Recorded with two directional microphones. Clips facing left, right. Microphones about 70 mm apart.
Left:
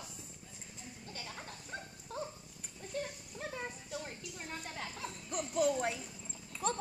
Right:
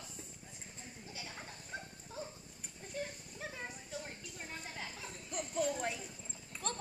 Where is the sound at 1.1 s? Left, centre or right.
Centre.